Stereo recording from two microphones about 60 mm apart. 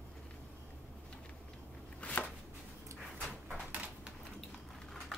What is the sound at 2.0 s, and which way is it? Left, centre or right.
Chopping, left.